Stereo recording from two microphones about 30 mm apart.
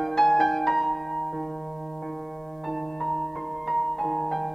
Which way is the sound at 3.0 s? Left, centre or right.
Centre.